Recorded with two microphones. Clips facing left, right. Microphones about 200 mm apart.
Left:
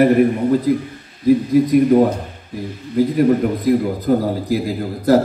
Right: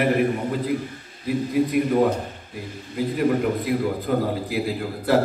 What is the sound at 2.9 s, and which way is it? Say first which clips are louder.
A man's voice: left 7 dB; 40° left (ahead or behind).